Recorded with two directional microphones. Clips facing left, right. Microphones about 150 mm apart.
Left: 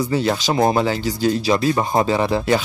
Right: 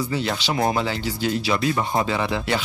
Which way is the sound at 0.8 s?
40° left (ahead or behind).